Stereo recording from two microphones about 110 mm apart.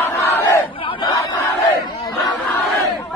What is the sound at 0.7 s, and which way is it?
Battle cry, 55° left (ahead or behind).